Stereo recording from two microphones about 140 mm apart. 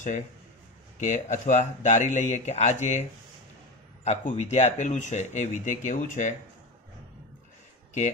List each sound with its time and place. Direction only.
1.0 s speech: 65° left (ahead or behind)